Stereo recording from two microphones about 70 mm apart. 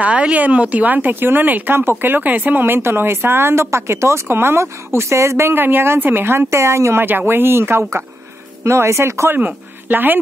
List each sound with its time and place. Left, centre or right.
0.0 s speech: centre; by 9.3 s right
9.3 s speech: right